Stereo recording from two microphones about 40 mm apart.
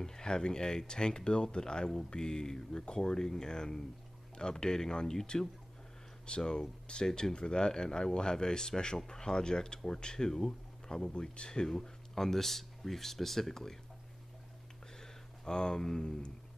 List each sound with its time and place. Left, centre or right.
0.0 s speech: centre
11.7 s speech: centre
15.0 s speech: centre